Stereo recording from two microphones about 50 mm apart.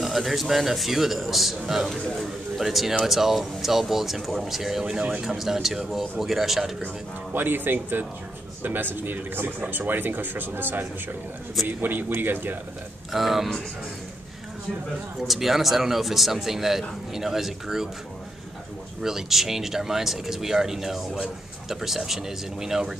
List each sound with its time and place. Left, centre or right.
0.0 s speech: centre
7.3 s speech: right
13.1 s speech: centre
15.2 s speech: centre
19.0 s speech: centre